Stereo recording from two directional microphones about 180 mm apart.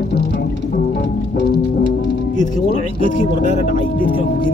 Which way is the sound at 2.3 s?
40° left (ahead or behind).